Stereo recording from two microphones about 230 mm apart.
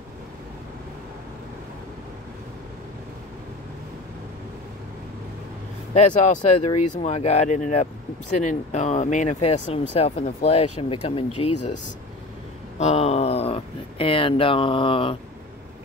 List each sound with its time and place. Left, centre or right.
5.9 s speech: left
12.7 s speech: left